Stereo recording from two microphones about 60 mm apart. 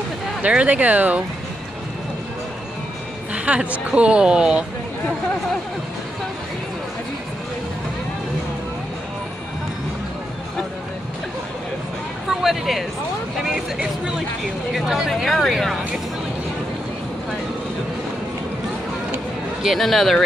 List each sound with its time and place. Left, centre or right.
0.4 s a woman's voice: right
3.3 s a woman's voice: right
12.3 s speech: centre
19.6 s speech: centre